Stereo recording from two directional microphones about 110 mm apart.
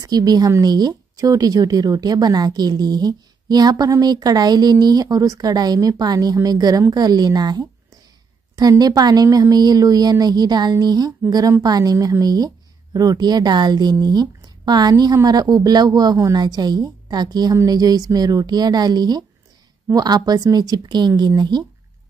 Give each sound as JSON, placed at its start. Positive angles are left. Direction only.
{"t": 0.0, "sound": "a woman's voice", "side_deg": -35}